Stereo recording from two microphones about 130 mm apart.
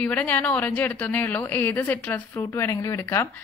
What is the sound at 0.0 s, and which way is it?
Speech, 10° left (ahead or behind).